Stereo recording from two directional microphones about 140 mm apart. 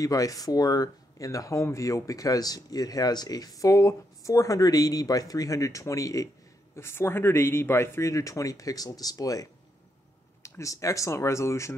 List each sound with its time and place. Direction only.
0.0 s speech: 25° left (ahead or behind)